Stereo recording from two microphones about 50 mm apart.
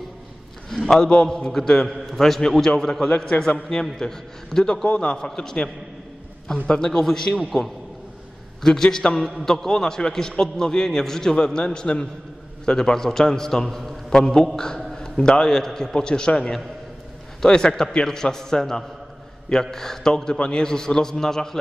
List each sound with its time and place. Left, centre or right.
0.7 s a man's voice: centre
3.2 s a man's voice: centre
4.8 s a man's voice: left
6.7 s a man's voice: centre
8.6 s a man's voice: centre